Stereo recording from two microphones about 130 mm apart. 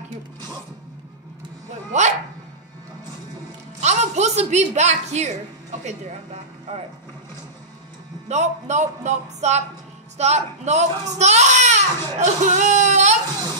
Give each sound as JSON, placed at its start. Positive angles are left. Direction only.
{"t": 1.9, "sound": "dog", "side_deg": -65}
{"t": 3.8, "sound": "speech", "side_deg": -60}
{"t": 8.3, "sound": "speech", "side_deg": -60}